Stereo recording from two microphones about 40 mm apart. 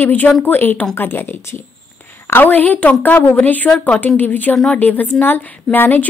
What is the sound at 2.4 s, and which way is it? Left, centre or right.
Speech, left.